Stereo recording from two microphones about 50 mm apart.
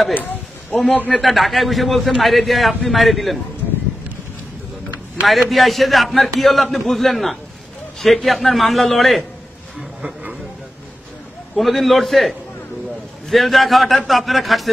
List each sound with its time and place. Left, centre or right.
0.1 s a sound: left
1.2 s a man's voice: centre
5.3 s a man's voice: centre
11.5 s a man's voice: centre